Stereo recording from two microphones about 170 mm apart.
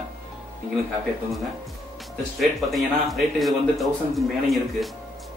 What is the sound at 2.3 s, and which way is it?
Speech, centre (ahead or behind).